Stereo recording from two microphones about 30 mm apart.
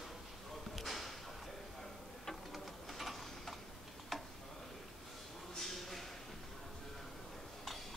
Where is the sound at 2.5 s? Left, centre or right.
Centre.